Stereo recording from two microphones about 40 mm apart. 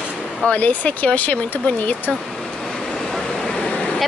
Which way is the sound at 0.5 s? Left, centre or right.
Left.